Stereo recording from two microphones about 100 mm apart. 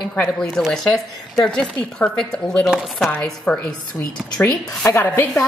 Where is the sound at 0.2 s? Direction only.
5° left (ahead or behind).